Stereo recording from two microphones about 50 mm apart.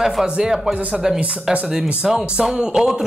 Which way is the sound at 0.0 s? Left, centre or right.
Centre.